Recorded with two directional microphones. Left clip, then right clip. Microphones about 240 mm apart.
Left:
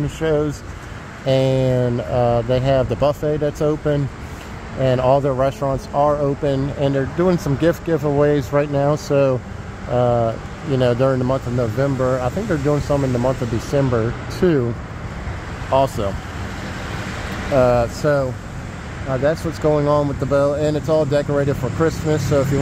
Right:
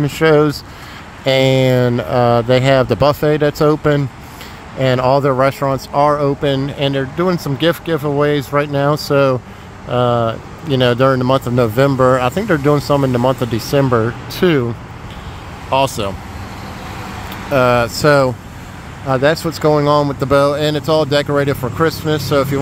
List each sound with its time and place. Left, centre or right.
0.0 s speech: right
1.2 s speech: centre
15.7 s speech: centre
17.6 s speech: centre